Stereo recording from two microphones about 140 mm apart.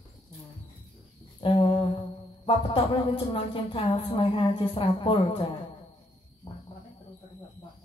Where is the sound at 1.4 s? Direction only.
40° left (ahead or behind).